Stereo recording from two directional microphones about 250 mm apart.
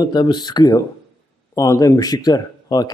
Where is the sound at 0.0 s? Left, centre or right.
Centre.